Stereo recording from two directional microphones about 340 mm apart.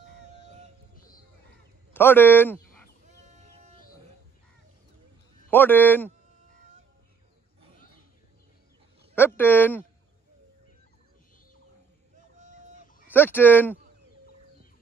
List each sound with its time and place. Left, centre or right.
2.0 s speech: centre
5.5 s speech: centre
9.4 s speech: centre
12.4 s fowl: right
13.1 s speech: centre